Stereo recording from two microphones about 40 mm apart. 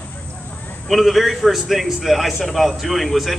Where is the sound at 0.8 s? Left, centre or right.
Centre.